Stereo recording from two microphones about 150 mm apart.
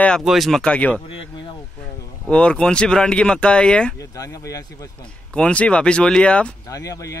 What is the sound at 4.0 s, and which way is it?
Speech, 20° left (ahead or behind).